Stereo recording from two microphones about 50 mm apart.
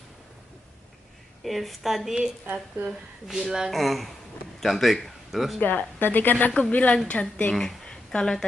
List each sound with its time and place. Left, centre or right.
1.4 s a woman's voice: centre
3.3 s a woman's voice: centre
5.6 s a woman's voice: left
7.5 s speech: centre